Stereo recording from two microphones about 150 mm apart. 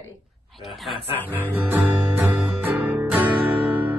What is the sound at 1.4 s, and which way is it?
Music, 15° right (ahead or behind).